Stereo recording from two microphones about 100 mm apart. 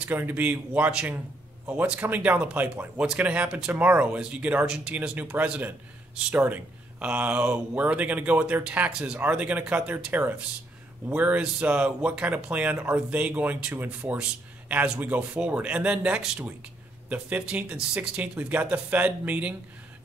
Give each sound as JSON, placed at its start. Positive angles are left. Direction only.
{"t": 0.0, "sound": "speech", "side_deg": -15}